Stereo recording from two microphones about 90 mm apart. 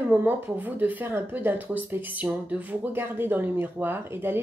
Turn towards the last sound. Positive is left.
turn(degrees=-25)  # may be behind; listen again after turning